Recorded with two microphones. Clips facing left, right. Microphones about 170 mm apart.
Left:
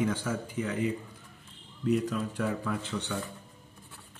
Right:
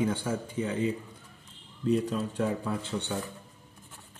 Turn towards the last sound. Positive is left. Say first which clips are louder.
# right 1 dB
turn(degrees=-25)  # may be behind; listen again after turning